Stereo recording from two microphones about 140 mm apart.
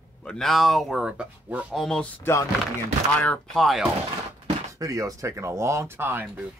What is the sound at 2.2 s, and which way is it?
Speech, 20° left (ahead or behind).